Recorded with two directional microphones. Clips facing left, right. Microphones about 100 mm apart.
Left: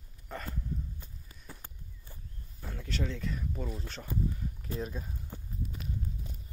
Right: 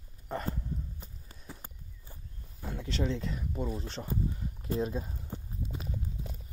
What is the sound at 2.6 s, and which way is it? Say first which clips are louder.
Speech: right 3 dB; 20° right (ahead or behind).